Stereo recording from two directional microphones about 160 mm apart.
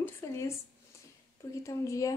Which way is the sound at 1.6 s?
20° left (ahead or behind).